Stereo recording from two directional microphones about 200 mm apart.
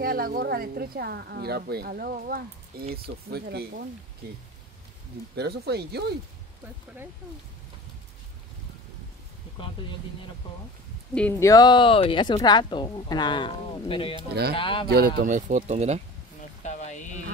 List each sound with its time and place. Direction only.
0.0 s a woman's voice: 45° right (ahead or behind)
5.3 s a woman's voice: 55° right (ahead or behind)
11.1 s speech: 10° left (ahead or behind)
14.9 s speech: 45° right (ahead or behind)
16.6 s a sound: 35° left (ahead or behind)